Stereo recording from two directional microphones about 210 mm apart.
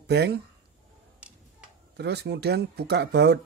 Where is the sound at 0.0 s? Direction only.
50° right (ahead or behind).